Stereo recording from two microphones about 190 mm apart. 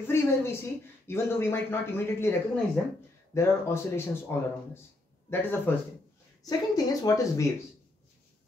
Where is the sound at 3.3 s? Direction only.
15° left (ahead or behind).